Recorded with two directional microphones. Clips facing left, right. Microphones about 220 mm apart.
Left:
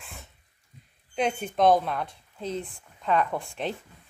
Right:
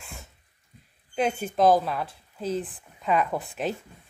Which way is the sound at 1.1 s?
Centre (ahead or behind).